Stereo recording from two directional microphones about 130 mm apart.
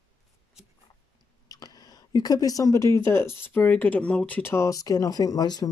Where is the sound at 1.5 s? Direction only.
30° left (ahead or behind).